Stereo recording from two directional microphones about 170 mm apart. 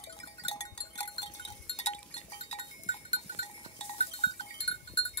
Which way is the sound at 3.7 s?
35° left (ahead or behind).